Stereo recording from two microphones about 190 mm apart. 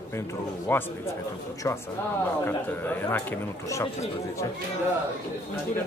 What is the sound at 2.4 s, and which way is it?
Speech, 10° left (ahead or behind).